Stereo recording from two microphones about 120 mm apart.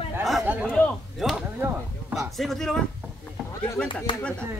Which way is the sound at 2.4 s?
5° left (ahead or behind).